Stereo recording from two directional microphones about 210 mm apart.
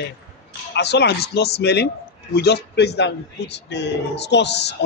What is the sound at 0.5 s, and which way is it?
Speech, 50° left (ahead or behind).